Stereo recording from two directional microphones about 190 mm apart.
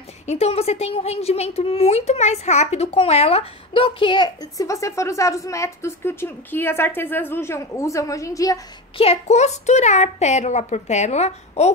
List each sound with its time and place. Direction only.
0.3 s a woman's voice: 35° left (ahead or behind); by 8.5 s 15° left (ahead or behind)
8.9 s a woman's voice: 30° left (ahead or behind)